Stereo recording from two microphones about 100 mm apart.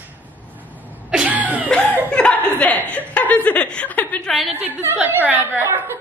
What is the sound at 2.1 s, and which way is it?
A woman's voice, 10° left (ahead or behind).